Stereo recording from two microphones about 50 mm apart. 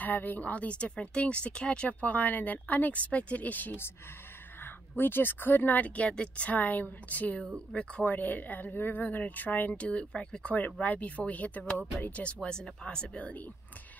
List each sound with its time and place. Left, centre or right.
0.0 s speech: left; by 1.9 s centre
1.9 s speech: left
4.9 s speech: left
8.1 s speech: left